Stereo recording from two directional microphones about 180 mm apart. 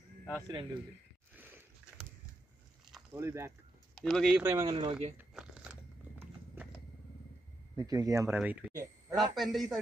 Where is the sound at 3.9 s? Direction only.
Centre (ahead or behind).